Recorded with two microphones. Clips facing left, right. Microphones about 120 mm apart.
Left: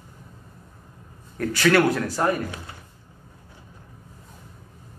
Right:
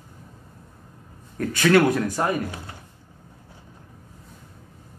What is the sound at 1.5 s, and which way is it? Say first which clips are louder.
Speech: right 1 dB; 20° right (ahead or behind).